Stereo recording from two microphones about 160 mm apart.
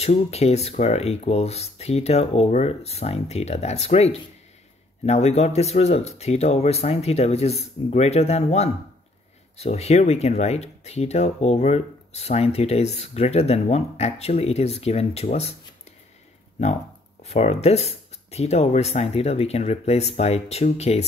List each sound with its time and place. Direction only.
0.0 s speech: 40° left (ahead or behind)
17.2 s speech: 40° left (ahead or behind)